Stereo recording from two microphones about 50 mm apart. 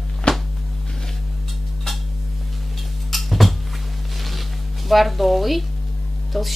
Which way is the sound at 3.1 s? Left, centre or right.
Centre.